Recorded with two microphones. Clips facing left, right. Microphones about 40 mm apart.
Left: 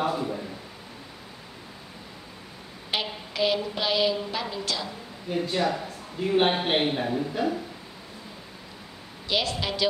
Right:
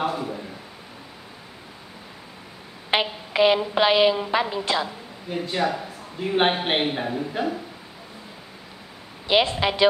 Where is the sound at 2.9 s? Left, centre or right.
Right.